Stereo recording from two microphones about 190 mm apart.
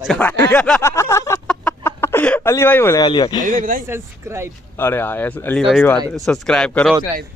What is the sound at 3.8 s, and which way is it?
Speech, 15° right (ahead or behind).